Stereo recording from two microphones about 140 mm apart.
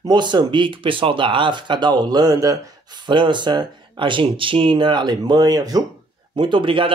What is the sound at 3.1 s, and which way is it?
Speech, 35° right (ahead or behind).